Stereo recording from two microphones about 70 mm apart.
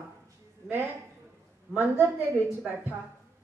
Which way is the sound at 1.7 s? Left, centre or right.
Right.